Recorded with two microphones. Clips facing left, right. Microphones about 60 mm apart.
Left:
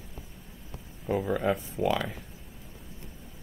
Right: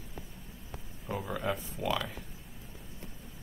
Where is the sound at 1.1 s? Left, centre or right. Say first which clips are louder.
Left 7 dB; left.